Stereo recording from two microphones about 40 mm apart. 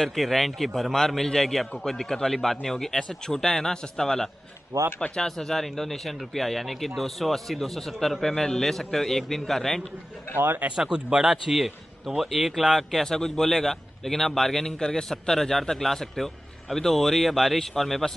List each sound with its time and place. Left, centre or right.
0.1 s speech: centre
10.3 s speech: right
10.8 s speech: centre
12.2 s speech: centre
13.0 s speech: centre